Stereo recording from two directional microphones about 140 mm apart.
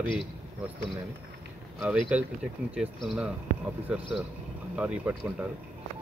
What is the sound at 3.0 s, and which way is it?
Speech, 5° right (ahead or behind).